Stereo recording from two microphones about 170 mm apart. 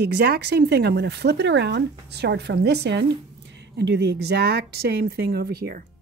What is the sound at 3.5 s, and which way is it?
Speech, 90° right.